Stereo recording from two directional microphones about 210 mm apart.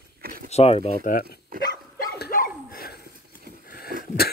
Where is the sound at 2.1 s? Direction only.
45° left (ahead or behind).